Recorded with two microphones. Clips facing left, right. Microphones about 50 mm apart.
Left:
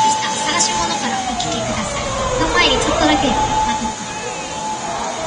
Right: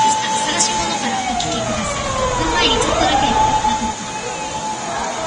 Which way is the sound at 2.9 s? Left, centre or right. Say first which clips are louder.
Left 1 dB; left.